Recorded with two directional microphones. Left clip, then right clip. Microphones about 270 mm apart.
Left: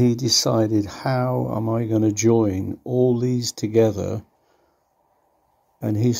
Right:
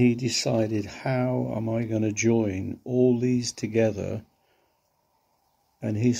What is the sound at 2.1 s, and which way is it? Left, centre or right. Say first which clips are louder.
Speech: left 4 dB; left.